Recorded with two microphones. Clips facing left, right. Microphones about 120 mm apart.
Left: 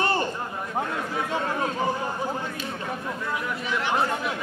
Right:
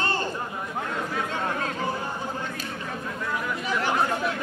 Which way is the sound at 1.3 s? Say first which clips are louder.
Left 2 dB; 20° left (ahead or behind).